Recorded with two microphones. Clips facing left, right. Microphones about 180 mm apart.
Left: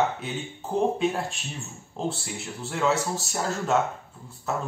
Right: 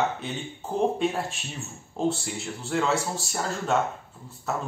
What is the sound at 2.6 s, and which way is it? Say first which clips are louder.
Speech: left 1 dB; centre (ahead or behind).